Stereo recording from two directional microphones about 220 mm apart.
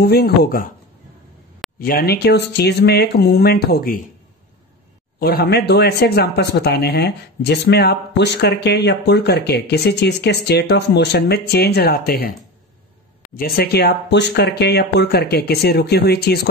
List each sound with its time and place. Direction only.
0.0 s speech: 45° left (ahead or behind)
1.8 s speech: 45° left (ahead or behind)
5.2 s speech: 45° left (ahead or behind)
13.3 s speech: 45° left (ahead or behind)